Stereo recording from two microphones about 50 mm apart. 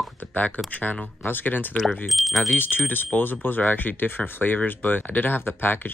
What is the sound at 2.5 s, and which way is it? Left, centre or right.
Speech, left.